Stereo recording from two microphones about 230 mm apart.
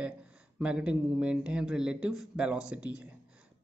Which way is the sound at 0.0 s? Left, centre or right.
Centre.